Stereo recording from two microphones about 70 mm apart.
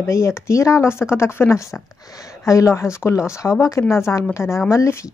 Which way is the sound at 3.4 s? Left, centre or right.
Centre.